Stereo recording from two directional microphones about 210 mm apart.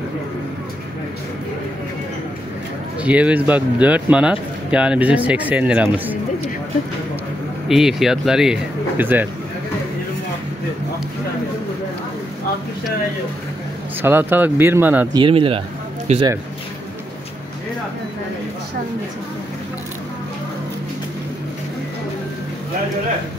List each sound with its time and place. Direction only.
3.0 s speech: 5° right (ahead or behind)
7.6 s speech: centre (ahead or behind)
14.0 s speech: 10° right (ahead or behind)
15.1 s speech: 25° right (ahead or behind)